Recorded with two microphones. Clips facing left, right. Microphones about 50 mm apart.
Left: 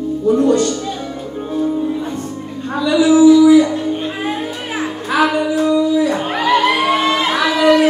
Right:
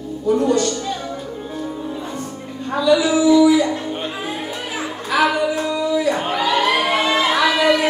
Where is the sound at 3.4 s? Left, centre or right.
Left.